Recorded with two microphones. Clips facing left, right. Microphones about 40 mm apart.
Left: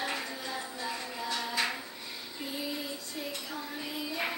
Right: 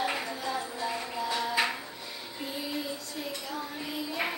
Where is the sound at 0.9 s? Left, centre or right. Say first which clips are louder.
Right 3 dB; centre.